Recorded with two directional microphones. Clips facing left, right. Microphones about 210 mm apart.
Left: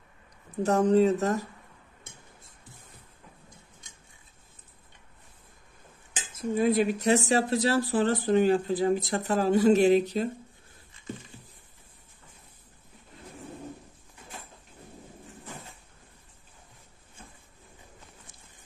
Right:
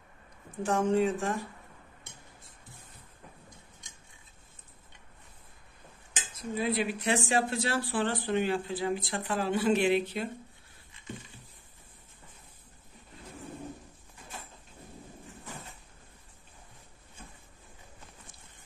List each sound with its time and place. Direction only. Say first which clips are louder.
0.6 s speech: left 5 dB; 40° left (ahead or behind)
6.3 s speech: left 7 dB; 45° left (ahead or behind)